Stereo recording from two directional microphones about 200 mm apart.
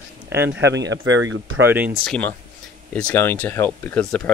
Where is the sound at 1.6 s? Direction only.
10° right (ahead or behind).